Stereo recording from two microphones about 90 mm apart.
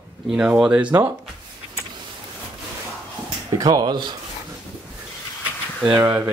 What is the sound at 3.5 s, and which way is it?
Speech, 50° right (ahead or behind).